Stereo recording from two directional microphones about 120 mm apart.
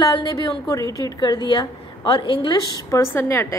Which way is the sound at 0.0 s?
35° left (ahead or behind).